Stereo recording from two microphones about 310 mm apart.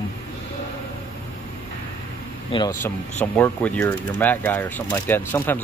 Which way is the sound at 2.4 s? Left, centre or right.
Centre.